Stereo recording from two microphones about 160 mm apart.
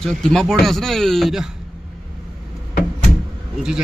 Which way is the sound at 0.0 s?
Centre (ahead or behind).